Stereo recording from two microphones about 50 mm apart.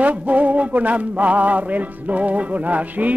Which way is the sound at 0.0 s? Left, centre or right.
Right.